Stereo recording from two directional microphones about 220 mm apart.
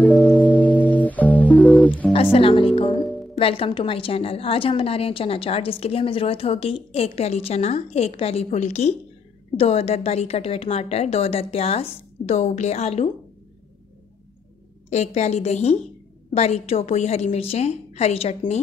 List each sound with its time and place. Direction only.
0.0 s music: 5° left (ahead or behind)
2.3 s speech: 25° left (ahead or behind)
3.0 s music: 5° left (ahead or behind)
3.3 s a woman's voice: 25° left (ahead or behind)
14.9 s a woman's voice: 30° left (ahead or behind)